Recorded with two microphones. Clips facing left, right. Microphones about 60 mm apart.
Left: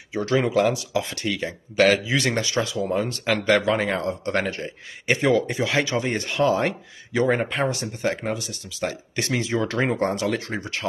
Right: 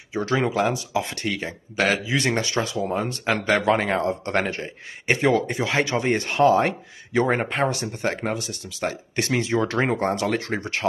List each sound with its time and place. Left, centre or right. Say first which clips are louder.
0.1 s a man's voice: left 2 dB; right
1.0 s speech: left 1 dB; right
1.8 s a man's voice: left 3 dB; right